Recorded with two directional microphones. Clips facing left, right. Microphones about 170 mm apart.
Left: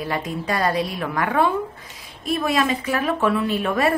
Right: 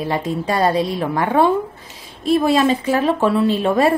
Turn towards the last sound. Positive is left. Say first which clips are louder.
# right 5 dB
turn(degrees=-30)  # may be behind; listen again after turning